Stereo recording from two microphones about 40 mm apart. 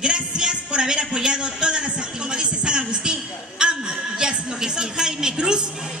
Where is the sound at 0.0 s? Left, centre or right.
Right.